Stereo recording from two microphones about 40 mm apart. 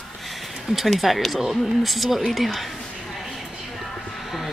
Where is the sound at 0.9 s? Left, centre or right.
Centre.